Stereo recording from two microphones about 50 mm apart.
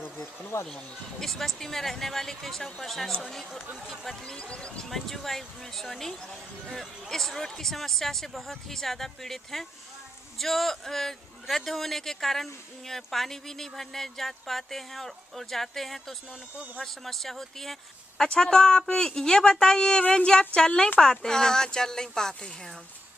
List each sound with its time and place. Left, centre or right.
0.5 s speech: left
1.2 s speech: centre
4.2 s speech: centre
4.8 s speech: centre